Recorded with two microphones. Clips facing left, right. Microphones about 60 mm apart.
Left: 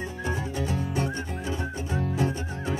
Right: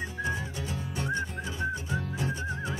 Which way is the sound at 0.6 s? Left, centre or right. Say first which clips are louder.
Left 7 dB; left.